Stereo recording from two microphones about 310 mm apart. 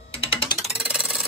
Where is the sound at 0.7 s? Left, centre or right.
Centre.